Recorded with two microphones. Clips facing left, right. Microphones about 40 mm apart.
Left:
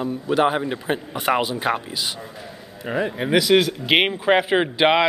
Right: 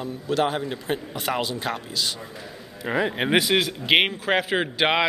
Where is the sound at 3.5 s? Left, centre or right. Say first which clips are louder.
Left 3 dB; centre.